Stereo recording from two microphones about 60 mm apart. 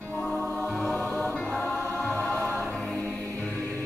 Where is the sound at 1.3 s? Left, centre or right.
Centre.